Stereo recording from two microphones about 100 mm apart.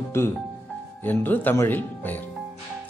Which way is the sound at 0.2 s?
25° left (ahead or behind).